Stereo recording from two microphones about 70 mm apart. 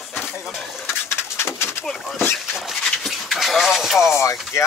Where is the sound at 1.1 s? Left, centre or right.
Left.